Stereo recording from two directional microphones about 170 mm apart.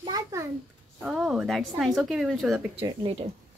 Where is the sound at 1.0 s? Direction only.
Centre (ahead or behind).